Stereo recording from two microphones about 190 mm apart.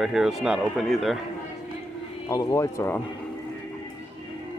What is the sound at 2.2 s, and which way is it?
Speech, 20° left (ahead or behind).